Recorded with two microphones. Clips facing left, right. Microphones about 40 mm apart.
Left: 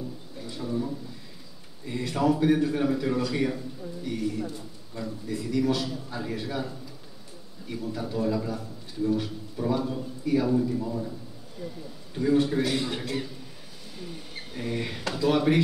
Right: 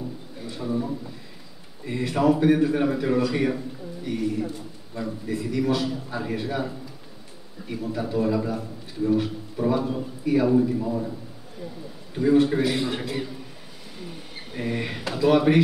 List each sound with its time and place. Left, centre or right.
0.5 s a man's voice: centre
14.5 s speech: centre